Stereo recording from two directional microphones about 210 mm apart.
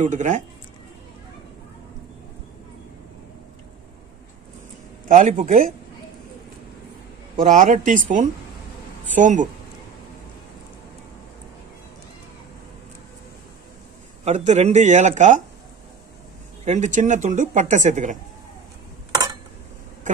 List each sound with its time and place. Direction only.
0.0 s speech: 35° right (ahead or behind)
5.0 s speech: 40° right (ahead or behind)
7.3 s speech: 40° right (ahead or behind)
14.2 s speech: 35° right (ahead or behind)
16.6 s speech: 35° right (ahead or behind)